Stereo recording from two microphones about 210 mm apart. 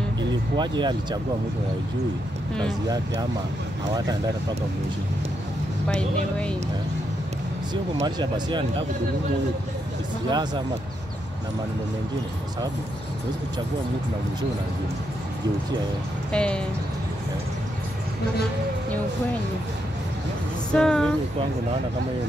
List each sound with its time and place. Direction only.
0.6 s speech: 20° right (ahead or behind)
5.9 s speech: 5° left (ahead or behind)
8.0 s speech: 20° right (ahead or behind)
10.3 s speech: 20° right (ahead or behind)
16.3 s speech: 5° left (ahead or behind)
20.7 s speech: 5° left (ahead or behind)